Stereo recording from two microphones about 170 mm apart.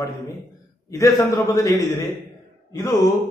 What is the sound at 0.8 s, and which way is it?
A man's voice, 20° left (ahead or behind).